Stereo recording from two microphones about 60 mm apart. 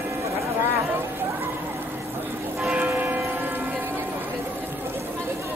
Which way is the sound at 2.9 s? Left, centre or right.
Right.